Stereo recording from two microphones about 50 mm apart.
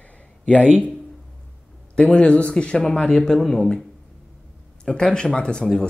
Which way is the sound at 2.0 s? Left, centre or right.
Left.